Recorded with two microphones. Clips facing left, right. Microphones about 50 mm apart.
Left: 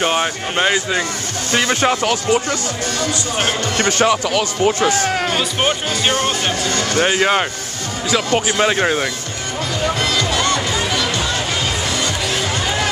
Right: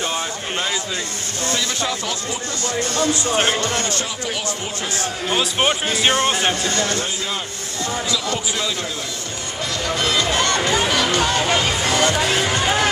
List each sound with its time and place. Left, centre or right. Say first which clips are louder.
0.0 s speech: left 6 dB; left
3.7 s speech: left 8 dB; left
5.3 s speech: left 1 dB; centre
6.0 s speech: right 1 dB; centre
6.9 s speech: left 9 dB; left
8.1 s speech: left 6 dB; left
10.5 s music: right 1 dB; right